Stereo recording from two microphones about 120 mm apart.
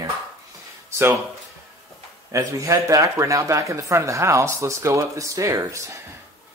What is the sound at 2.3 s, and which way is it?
Speech, 25° right (ahead or behind).